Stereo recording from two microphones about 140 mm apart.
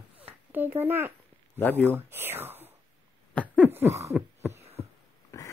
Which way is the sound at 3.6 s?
15° right (ahead or behind).